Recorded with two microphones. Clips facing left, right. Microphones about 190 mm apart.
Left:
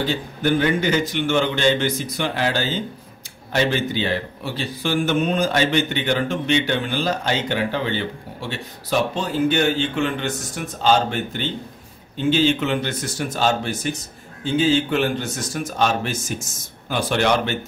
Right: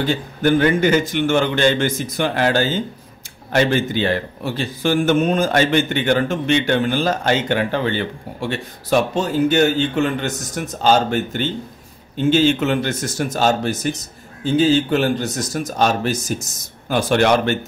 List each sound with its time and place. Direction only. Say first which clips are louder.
0.0 s speech: right 4 dB; 50° right (ahead or behind)
9.1 s speech: right 3 dB; 45° right (ahead or behind)